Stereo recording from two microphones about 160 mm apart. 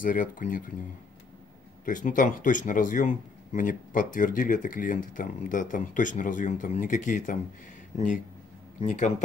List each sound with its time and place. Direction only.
0.0 s speech: 55° left (ahead or behind)
1.9 s speech: 55° left (ahead or behind)
8.8 s speech: 50° left (ahead or behind)